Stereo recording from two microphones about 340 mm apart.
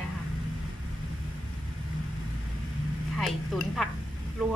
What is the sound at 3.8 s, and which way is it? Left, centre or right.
Speech, centre.